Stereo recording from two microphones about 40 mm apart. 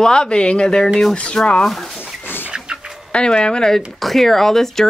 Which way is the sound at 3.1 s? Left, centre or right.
Left.